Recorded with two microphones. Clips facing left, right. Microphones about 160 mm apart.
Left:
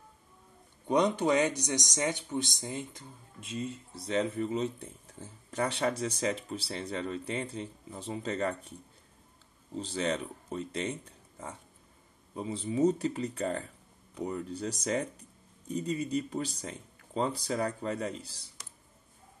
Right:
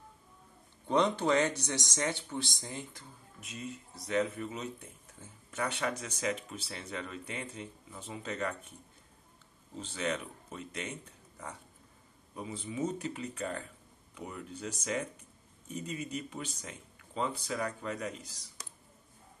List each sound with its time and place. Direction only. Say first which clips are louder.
0.8 s speech: left 2 dB; 15° left (ahead or behind); by 8.7 s 30° left (ahead or behind)
9.8 s speech: left 4 dB; 35° left (ahead or behind)